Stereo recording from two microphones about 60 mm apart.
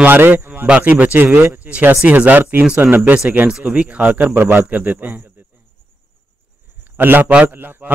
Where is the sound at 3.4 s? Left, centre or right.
Centre.